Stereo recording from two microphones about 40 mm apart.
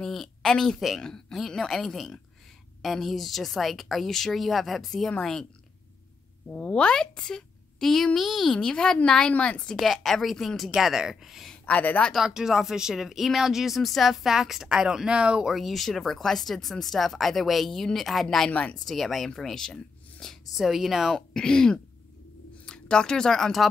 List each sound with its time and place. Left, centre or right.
0.0 s speech: centre
6.4 s speech: left
6.9 s a woman's voice: centre
7.9 s speech: centre
8.5 s speech: centre
9.8 s speech: centre
10.7 s speech: centre
11.5 s a sound: left
12.2 s speech: centre
15.4 s speech: centre
18.5 s speech: left
18.9 s speech: centre
20.5 s speech: centre
21.3 s speech: centre